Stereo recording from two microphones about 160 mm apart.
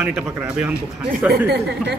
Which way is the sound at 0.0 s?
5° right (ahead or behind).